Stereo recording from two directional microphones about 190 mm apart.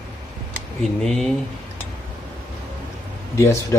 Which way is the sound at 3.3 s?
15° left (ahead or behind).